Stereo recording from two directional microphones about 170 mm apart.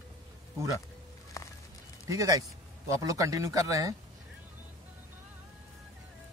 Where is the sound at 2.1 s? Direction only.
20° right (ahead or behind).